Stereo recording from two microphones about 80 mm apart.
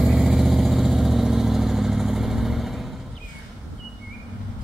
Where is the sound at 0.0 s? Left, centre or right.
Centre.